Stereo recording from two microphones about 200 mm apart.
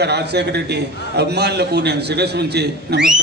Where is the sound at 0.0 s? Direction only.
55° right (ahead or behind).